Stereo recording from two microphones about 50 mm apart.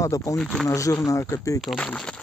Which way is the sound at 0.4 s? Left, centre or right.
Centre.